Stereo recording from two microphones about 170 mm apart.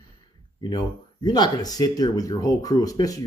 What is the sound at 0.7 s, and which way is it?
Speech, 25° left (ahead or behind).